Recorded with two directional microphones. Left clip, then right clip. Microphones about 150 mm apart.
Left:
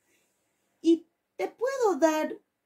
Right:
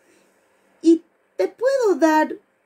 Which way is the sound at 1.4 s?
25° right (ahead or behind).